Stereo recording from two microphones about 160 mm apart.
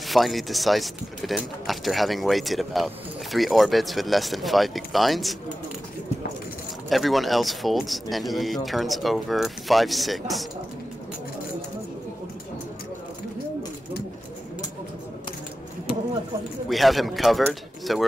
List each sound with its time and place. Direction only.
0.1 s speech: centre (ahead or behind)
6.9 s speech: centre (ahead or behind)
16.6 s a man's voice: centre (ahead or behind)